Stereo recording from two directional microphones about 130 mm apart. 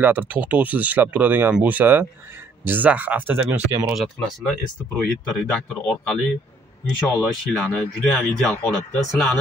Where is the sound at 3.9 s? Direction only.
Centre (ahead or behind).